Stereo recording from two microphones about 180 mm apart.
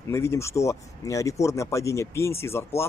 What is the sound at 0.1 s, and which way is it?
Speech, 15° left (ahead or behind).